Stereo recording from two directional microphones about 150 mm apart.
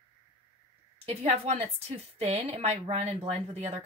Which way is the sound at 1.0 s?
45° right (ahead or behind).